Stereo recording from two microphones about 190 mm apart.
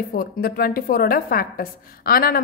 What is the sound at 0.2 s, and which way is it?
A woman's voice, 50° left (ahead or behind).